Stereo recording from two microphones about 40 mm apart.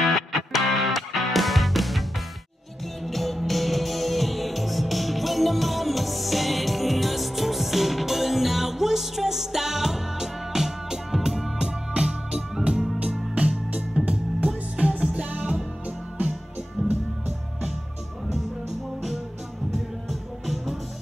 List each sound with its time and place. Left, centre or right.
0.0 s music: centre
11.5 s music: right
14.0 s music: right
16.8 s music: centre
19.7 s music: centre